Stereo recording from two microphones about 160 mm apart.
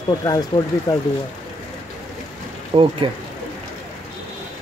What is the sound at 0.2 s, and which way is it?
Speech, 25° left (ahead or behind).